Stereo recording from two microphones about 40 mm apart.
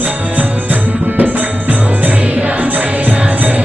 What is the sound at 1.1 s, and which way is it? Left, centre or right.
Music, right.